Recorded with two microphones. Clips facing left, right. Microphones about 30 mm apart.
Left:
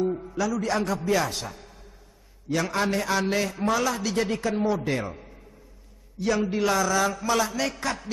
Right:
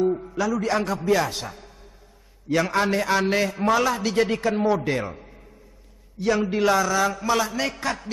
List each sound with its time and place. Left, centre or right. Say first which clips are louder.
0.0 s a man's voice: right 3 dB; centre